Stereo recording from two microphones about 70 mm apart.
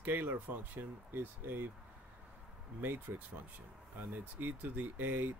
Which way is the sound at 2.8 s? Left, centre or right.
Right.